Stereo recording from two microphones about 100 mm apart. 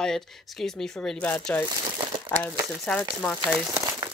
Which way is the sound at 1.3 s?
15° left (ahead or behind).